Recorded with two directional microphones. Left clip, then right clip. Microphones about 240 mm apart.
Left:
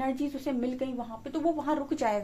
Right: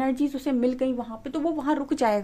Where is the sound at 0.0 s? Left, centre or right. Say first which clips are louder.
Right 5 dB; right.